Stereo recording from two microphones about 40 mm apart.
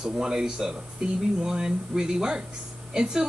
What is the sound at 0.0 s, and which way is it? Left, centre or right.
A woman's voice, centre.